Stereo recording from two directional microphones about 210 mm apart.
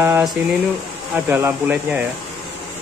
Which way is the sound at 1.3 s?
10° right (ahead or behind).